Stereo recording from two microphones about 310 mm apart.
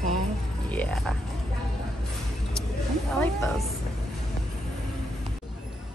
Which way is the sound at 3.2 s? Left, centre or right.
Centre.